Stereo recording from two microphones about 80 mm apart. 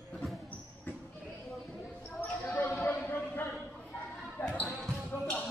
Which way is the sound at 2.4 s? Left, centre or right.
Left.